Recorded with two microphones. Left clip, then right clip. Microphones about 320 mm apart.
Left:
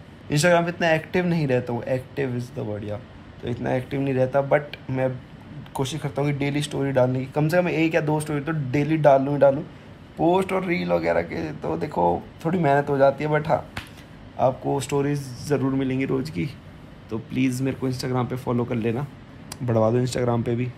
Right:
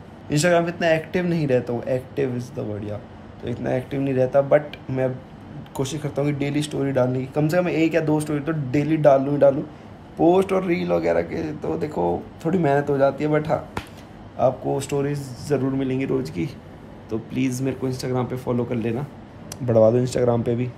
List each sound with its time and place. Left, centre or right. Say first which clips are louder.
0.3 s speech: even; centre